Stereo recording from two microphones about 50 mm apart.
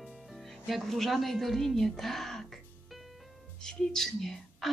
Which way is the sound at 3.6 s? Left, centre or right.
Centre.